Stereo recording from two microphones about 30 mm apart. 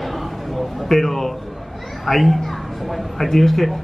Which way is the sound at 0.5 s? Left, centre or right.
Centre.